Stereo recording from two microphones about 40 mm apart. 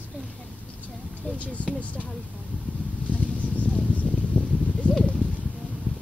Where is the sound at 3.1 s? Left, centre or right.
Left.